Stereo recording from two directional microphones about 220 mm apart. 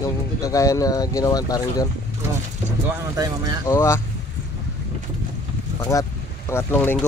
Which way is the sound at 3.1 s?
15° right (ahead or behind).